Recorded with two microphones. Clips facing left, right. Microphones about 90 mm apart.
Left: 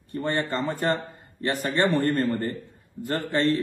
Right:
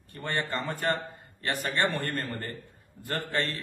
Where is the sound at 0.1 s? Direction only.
20° left (ahead or behind).